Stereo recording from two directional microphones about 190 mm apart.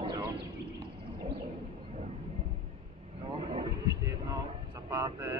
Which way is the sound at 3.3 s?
30° right (ahead or behind).